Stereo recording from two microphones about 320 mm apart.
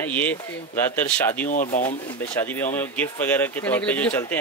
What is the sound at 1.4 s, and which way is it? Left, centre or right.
Speech, left.